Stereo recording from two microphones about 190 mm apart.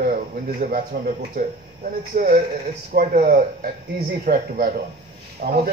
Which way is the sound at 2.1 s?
45° right (ahead or behind).